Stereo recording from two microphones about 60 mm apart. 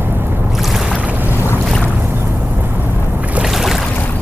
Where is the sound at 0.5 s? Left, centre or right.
Centre.